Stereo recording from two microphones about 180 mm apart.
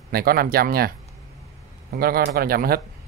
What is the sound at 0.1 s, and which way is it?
Speech, 55° right (ahead or behind).